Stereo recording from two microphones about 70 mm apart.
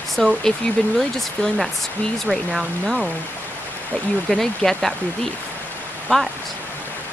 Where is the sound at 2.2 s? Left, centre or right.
Centre.